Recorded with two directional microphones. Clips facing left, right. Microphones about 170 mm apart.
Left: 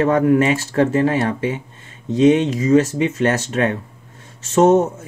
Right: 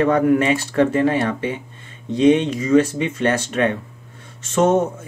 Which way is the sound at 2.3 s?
40° left (ahead or behind).